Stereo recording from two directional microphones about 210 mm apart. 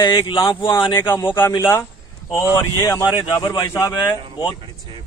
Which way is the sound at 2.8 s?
15° left (ahead or behind).